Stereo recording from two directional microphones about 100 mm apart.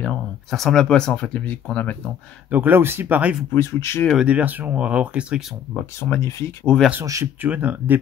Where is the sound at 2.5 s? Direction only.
20° right (ahead or behind).